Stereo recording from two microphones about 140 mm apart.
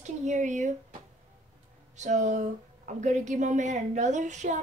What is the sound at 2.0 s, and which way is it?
A woman's voice, 60° right (ahead or behind).